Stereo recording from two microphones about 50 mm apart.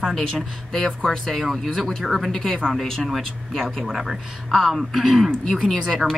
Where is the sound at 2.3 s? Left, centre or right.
Centre.